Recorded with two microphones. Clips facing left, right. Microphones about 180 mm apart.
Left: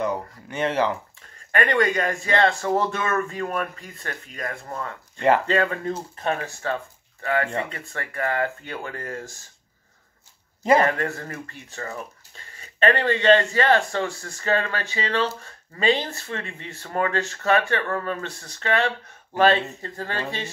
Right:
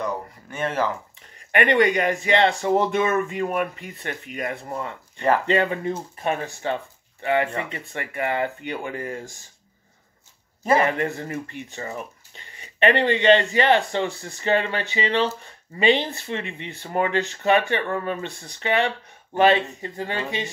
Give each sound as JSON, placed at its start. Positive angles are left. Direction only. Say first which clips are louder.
{"t": 1.5, "sound": "speech", "louder": "right 3 dB", "side_deg": -20}
{"t": 10.8, "sound": "speech", "louder": "even", "side_deg": -15}